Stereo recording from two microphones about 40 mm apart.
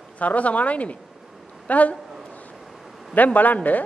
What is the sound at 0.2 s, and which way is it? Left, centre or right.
A woman's voice, left.